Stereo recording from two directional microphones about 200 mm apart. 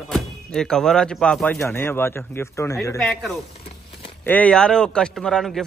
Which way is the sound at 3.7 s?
30° left (ahead or behind).